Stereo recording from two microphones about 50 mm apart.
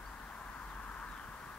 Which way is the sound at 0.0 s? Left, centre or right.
Left.